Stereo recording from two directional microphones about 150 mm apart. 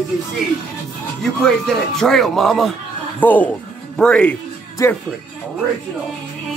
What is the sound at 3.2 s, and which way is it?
Speech, 10° left (ahead or behind).